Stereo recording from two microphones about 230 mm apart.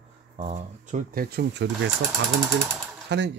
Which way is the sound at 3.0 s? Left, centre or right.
Right.